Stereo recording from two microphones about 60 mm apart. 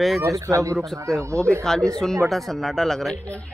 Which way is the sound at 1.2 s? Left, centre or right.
Right.